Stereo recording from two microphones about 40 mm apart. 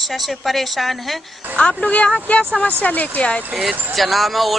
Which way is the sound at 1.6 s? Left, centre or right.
Left.